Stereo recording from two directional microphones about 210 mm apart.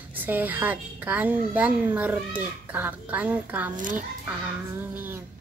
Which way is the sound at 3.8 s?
40° right (ahead or behind).